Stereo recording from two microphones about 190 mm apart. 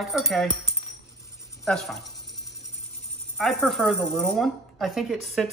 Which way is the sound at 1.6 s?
Centre (ahead or behind).